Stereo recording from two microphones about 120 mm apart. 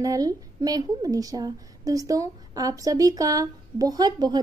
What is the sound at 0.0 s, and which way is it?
A woman's voice, 30° right (ahead or behind).